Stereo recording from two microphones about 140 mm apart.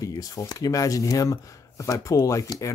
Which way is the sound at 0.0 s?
25° left (ahead or behind).